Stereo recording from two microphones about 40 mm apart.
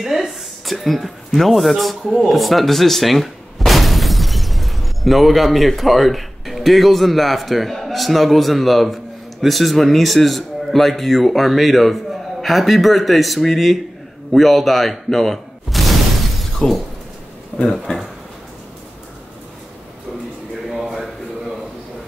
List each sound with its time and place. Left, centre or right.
0.0 s speech: centre
16.5 s shatter: centre
17.9 s speech: left
20.7 s a sound: centre